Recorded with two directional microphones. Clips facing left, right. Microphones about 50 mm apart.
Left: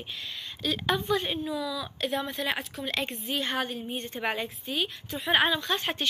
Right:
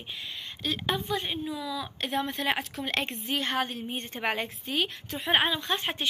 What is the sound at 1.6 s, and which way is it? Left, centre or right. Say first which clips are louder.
Speech: left 2 dB; right.